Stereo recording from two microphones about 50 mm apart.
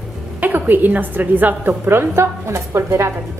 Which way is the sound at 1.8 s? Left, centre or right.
Right.